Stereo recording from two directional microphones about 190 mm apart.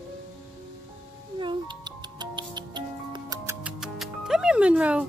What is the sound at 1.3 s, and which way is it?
Music, 25° right (ahead or behind).